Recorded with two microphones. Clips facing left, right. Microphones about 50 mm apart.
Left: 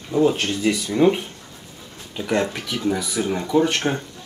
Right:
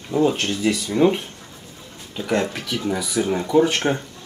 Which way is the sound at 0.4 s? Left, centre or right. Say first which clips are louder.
Even; centre.